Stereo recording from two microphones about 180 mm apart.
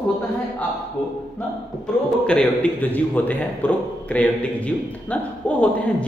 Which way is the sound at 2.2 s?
5° left (ahead or behind).